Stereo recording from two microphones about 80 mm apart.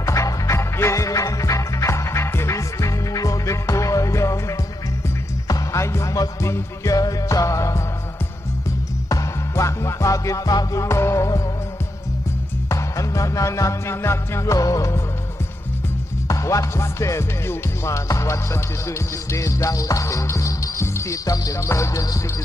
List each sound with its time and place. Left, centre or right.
0.0 s music: left
9.1 s music: left
10.8 s music: left
12.6 s music: left
16.3 s music: left